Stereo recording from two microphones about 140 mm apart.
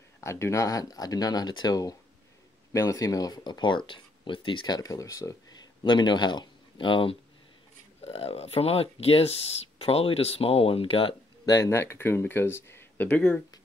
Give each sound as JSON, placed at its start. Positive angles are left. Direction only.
{"t": 0.2, "sound": "speech", "side_deg": 20}
{"t": 11.4, "sound": "speech", "side_deg": 20}